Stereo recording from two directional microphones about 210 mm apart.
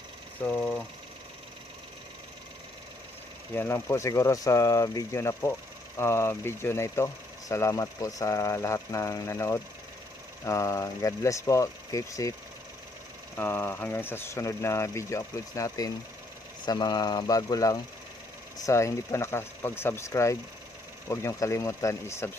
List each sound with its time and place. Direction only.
0.4 s speech: 5° left (ahead or behind)
3.5 s speech: 10° left (ahead or behind)
13.4 s speech: 10° left (ahead or behind)